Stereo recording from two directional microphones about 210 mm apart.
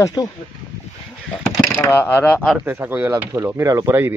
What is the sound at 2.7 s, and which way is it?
Speech, 10° right (ahead or behind).